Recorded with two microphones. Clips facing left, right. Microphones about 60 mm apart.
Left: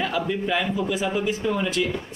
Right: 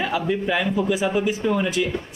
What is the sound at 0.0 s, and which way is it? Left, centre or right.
Speech, centre.